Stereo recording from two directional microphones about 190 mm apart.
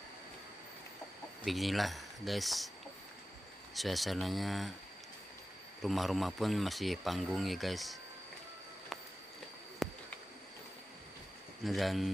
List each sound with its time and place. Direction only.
1.4 s speech: centre (ahead or behind)
3.7 s speech: centre (ahead or behind)
5.8 s speech: centre (ahead or behind)
9.8 s a sound: centre (ahead or behind)
11.6 s speech: centre (ahead or behind)